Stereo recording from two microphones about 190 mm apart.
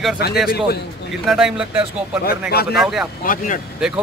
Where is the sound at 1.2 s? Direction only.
Centre (ahead or behind).